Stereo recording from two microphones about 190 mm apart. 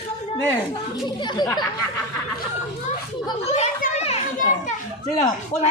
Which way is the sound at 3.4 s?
35° left (ahead or behind).